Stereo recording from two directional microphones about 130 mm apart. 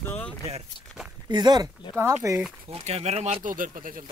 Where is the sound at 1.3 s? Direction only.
35° right (ahead or behind).